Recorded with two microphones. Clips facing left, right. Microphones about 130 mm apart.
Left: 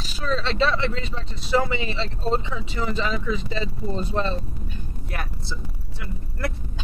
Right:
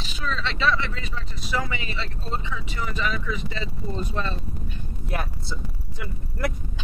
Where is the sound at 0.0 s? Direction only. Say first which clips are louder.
Left 3 dB; 35° left (ahead or behind).